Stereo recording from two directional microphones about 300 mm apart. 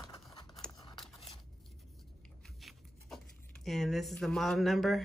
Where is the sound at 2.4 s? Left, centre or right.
Centre.